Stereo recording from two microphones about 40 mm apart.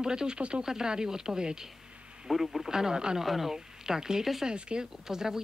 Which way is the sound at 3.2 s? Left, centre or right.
Centre.